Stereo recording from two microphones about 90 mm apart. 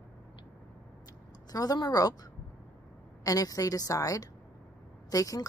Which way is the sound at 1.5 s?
45° left (ahead or behind).